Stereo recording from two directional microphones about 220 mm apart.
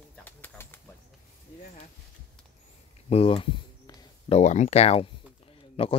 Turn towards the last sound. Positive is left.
turn(degrees=25)  # may be behind; listen again after turning